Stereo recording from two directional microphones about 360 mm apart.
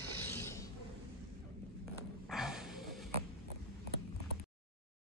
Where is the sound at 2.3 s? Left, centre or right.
Centre.